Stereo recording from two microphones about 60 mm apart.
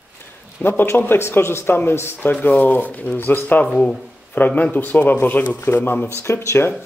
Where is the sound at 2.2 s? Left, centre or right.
Left.